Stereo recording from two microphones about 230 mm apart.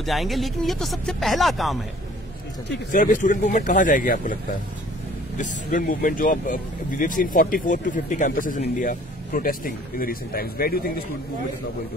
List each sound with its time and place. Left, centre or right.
0.0 s speech: centre
2.9 s speech: left
5.4 s speech: left